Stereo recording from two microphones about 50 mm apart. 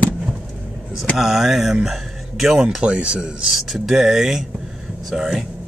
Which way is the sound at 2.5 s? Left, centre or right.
Centre.